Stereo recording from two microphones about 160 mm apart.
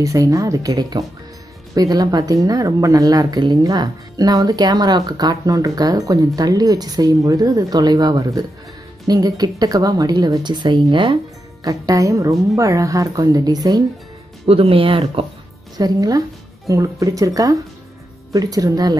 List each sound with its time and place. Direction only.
0.0 s speech: 20° right (ahead or behind)
14.4 s speech: 35° right (ahead or behind)
15.8 s speech: 25° right (ahead or behind)